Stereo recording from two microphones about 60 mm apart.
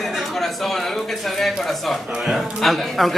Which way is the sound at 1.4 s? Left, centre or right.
Centre.